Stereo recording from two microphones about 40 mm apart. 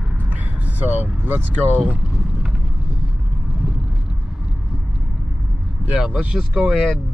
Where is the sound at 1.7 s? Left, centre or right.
Right.